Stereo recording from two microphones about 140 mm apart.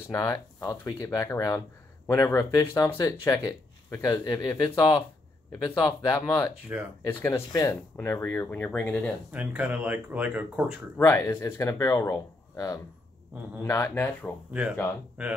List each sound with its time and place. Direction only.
0.1 s speech: 25° left (ahead or behind)
9.3 s speech: 10° right (ahead or behind)
11.0 s speech: 20° left (ahead or behind)
13.3 s speech: 10° right (ahead or behind)
13.7 s speech: 20° left (ahead or behind)
15.2 s speech: 5° right (ahead or behind)